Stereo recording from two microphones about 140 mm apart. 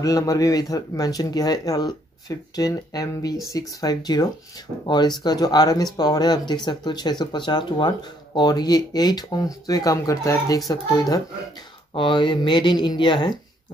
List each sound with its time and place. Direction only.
0.0 s speech: 25° left (ahead or behind)